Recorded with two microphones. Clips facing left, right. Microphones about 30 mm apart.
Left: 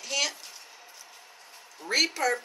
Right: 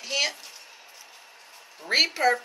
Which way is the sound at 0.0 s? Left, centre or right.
Right.